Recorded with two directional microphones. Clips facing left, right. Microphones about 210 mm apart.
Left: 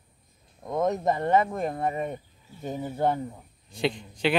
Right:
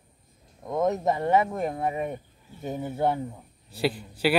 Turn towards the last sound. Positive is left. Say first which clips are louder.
# right 1 dB
turn(degrees=-5)  # may be behind; listen again after turning